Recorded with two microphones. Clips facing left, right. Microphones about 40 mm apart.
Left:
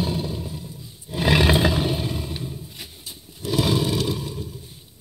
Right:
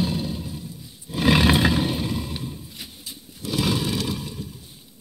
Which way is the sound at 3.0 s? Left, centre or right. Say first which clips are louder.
Left 3 dB; left.